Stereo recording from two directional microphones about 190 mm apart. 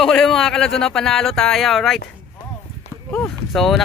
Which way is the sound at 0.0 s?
Centre (ahead or behind).